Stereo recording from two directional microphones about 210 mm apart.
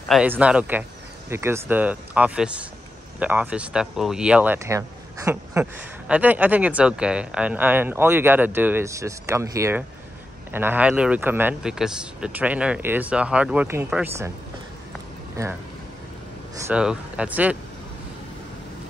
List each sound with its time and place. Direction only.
0.1 s speech: 5° right (ahead or behind)
15.4 s speech: 15° right (ahead or behind)
16.6 s speech: 5° right (ahead or behind)